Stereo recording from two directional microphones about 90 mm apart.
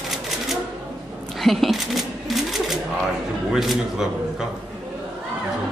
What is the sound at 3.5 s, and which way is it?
Speech, 5° right (ahead or behind).